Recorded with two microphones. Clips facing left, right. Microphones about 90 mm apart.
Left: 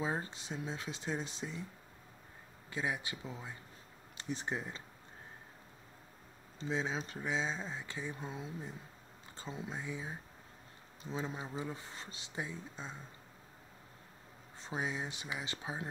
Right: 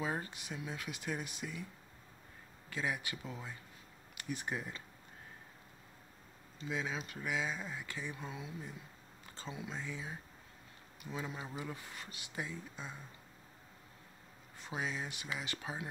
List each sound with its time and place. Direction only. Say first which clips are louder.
0.0 s speech: left 1 dB; 25° left (ahead or behind)
2.7 s speech: left 1 dB; 20° left (ahead or behind)
6.6 s speech: left 3 dB; 30° left (ahead or behind)
9.7 s speech: left 2 dB; 15° left (ahead or behind)
14.6 s speech: left 1 dB; 20° left (ahead or behind)